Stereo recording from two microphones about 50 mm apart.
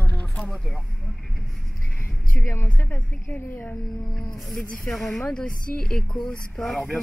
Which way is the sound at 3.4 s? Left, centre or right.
Left.